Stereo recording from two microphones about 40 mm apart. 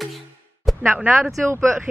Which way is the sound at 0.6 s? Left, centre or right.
Centre.